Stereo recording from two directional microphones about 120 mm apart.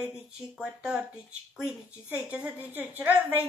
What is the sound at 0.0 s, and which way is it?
A woman's voice, 5° right (ahead or behind).